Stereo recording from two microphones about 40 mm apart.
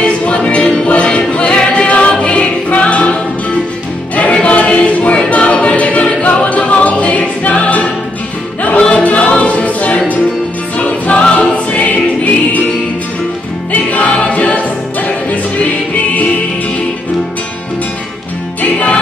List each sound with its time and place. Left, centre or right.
0.0 s music: left
4.1 s choir: left
8.9 s choir: left
13.7 s music: left
18.6 s music: left